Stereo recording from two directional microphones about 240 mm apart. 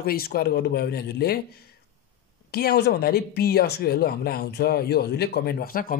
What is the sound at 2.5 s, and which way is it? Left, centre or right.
Speech, left.